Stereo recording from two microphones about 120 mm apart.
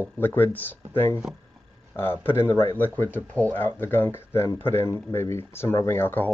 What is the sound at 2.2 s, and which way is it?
Speech, 20° left (ahead or behind).